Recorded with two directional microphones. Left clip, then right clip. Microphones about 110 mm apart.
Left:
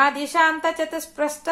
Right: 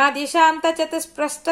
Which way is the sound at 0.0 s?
15° right (ahead or behind).